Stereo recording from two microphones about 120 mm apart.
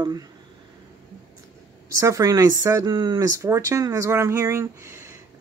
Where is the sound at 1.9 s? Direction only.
30° right (ahead or behind).